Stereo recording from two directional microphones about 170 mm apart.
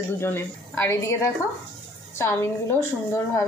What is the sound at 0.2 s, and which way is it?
Speech, 15° left (ahead or behind).